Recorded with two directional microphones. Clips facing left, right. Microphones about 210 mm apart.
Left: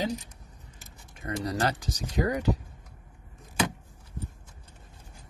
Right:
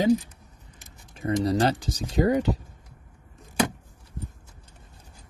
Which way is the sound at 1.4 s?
30° right (ahead or behind).